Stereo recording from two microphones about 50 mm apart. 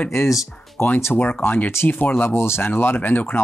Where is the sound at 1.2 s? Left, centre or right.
Left.